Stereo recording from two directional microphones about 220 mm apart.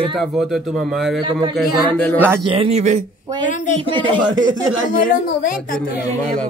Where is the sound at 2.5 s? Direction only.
30° right (ahead or behind).